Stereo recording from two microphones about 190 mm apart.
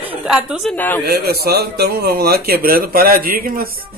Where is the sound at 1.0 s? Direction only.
55° right (ahead or behind).